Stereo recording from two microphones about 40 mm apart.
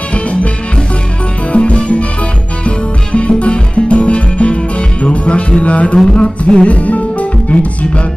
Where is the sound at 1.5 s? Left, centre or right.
Left.